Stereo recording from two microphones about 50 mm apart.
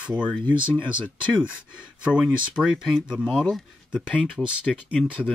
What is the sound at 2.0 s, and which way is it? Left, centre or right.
Speech, right.